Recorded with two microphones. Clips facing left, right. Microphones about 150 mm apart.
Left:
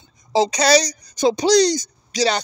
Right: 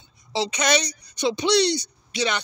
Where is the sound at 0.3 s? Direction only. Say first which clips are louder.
Left 7 dB; 40° left (ahead or behind).